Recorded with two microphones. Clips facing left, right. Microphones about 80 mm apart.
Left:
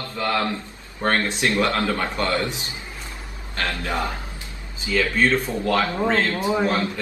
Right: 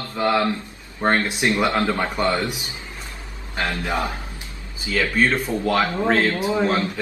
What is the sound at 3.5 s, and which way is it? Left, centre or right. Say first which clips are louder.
Mantra: right 2 dB; centre.